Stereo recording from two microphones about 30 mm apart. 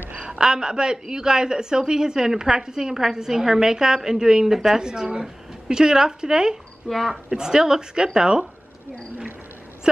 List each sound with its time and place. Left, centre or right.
0.4 s a woman's voice: right
6.9 s speech: centre
7.2 s a woman's voice: right